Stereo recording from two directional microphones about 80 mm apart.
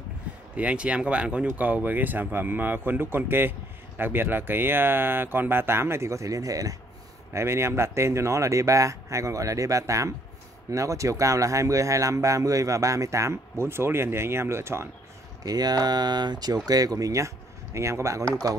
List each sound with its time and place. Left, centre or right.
0.6 s speech: centre; by 6.8 s right
7.3 s speech: right
15.4 s speech: right
18.4 s speech: right